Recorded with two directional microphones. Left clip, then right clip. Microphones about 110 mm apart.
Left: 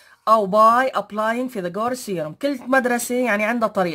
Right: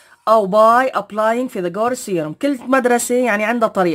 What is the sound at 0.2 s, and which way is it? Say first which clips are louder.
Speech: right 3 dB; 40° right (ahead or behind).